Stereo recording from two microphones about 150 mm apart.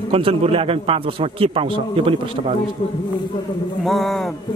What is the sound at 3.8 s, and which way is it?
Speech, centre (ahead or behind).